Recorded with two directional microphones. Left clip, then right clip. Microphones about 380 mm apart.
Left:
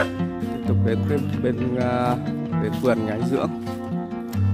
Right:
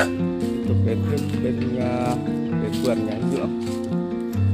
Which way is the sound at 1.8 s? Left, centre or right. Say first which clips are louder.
Left 3 dB; centre.